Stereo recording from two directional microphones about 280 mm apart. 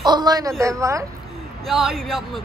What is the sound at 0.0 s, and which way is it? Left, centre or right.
A man's voice, centre.